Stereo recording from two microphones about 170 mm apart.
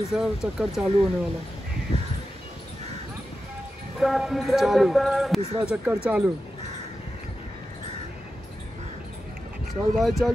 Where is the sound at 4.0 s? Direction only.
Centre (ahead or behind).